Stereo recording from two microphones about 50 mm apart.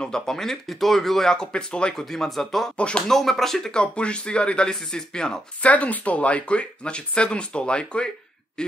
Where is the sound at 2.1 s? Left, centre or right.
Centre.